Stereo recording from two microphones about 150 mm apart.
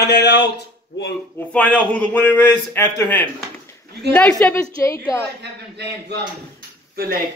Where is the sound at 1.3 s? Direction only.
10° left (ahead or behind).